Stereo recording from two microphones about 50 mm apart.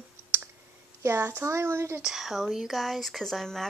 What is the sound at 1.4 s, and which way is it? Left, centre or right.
Speech, right.